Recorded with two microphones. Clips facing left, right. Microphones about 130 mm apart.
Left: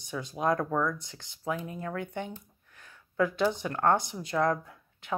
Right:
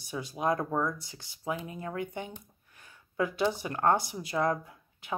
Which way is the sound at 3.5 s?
10° right (ahead or behind).